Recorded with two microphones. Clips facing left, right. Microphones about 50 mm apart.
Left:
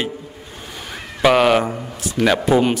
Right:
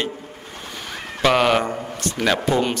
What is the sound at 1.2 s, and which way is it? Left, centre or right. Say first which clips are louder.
A man's voice: left 3 dB; centre.